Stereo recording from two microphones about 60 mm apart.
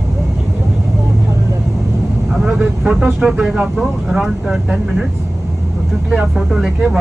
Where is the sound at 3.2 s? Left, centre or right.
Centre.